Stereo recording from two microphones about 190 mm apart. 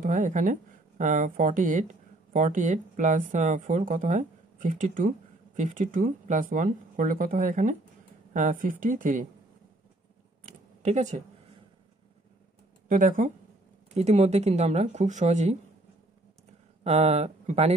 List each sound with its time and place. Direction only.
0.0 s speech: 45° right (ahead or behind)
10.8 s speech: 40° right (ahead or behind)
12.8 s speech: 45° right (ahead or behind)
16.8 s speech: 35° right (ahead or behind)